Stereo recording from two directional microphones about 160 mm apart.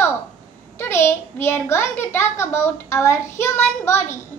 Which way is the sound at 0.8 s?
15° left (ahead or behind).